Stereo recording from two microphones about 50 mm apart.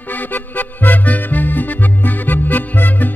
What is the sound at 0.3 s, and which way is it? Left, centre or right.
Music, left.